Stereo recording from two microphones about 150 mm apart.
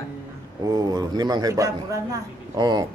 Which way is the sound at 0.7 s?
25° right (ahead or behind).